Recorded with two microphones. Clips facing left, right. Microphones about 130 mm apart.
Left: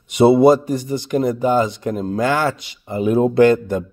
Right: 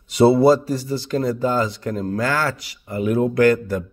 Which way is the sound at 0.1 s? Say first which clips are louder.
Left 2 dB; 20° left (ahead or behind).